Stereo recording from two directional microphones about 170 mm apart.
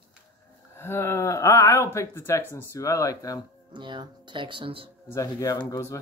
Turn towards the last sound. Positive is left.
turn(degrees=20)  # may be behind; listen again after turning